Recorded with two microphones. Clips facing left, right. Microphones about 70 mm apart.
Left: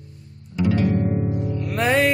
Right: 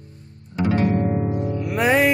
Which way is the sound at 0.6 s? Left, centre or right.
Right.